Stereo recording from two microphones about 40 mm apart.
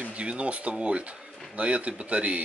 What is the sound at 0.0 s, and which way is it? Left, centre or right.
Speech, right.